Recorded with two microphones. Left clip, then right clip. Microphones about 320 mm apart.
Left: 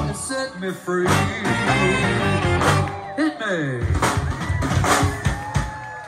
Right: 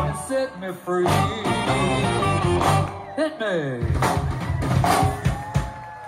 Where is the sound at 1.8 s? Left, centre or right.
Right.